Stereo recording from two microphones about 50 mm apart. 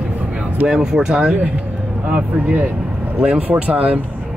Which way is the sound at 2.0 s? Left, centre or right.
Right.